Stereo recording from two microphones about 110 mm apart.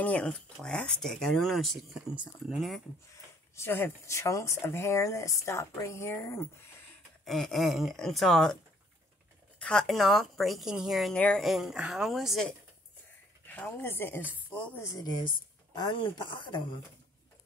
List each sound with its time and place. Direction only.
0.0 s speech: 10° left (ahead or behind)
3.5 s speech: 20° left (ahead or behind)
7.2 s speech: centre (ahead or behind)
9.6 s speech: 5° left (ahead or behind)
11.1 s speech: 10° left (ahead or behind)
11.4 s speech: centre (ahead or behind)
13.5 s a woman's voice: 15° left (ahead or behind)
15.0 s a woman's voice: 40° left (ahead or behind)